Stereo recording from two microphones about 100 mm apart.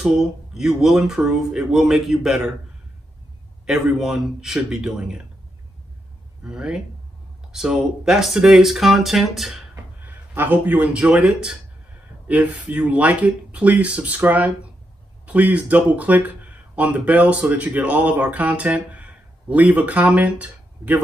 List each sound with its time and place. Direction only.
0.0 s speech: 5° right (ahead or behind)
3.6 s speech: 5° right (ahead or behind)
6.4 s speech: 5° right (ahead or behind)
9.9 s speech: 20° right (ahead or behind)